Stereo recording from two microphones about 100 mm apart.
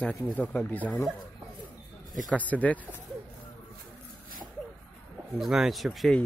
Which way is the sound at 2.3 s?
15° left (ahead or behind).